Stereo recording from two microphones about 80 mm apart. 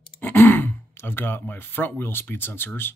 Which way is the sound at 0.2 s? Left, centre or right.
Left.